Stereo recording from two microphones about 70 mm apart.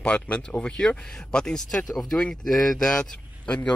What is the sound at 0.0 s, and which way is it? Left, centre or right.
Speech, centre.